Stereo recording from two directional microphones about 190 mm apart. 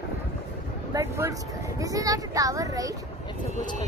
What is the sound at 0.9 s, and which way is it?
Speech, 15° right (ahead or behind).